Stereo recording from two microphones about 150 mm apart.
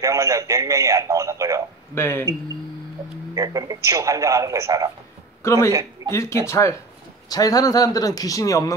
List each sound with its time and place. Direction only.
0.0 s speech: 20° right (ahead or behind)
2.0 s speech: 15° left (ahead or behind)
3.3 s speech: 25° right (ahead or behind)
5.4 s a man's voice: 20° left (ahead or behind)